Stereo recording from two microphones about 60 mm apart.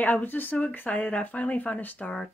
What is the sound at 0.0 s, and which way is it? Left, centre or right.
Speech, left.